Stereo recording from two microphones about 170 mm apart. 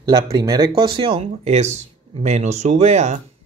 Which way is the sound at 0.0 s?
25° right (ahead or behind).